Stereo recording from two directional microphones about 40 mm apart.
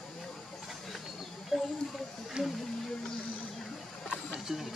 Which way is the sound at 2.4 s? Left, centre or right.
Right.